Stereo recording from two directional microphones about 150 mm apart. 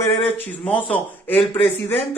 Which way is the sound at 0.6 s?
10° left (ahead or behind).